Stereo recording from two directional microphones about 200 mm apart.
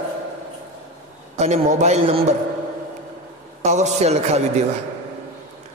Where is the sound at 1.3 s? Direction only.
35° right (ahead or behind).